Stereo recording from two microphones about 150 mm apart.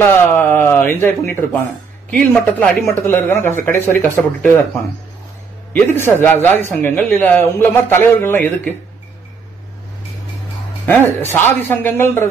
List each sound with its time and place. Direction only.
0.0 s speech: 15° left (ahead or behind)
5.7 s speech: 15° left (ahead or behind)
10.9 s speech: 15° left (ahead or behind)